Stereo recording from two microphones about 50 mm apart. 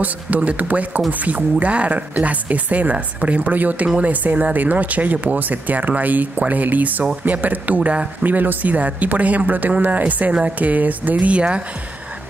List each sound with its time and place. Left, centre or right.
0.0 s speech: right
8.2 s speech: right